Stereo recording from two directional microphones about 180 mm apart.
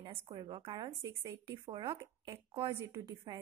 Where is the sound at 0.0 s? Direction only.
25° right (ahead or behind).